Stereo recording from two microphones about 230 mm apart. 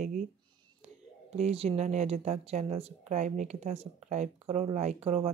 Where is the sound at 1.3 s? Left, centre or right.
Right.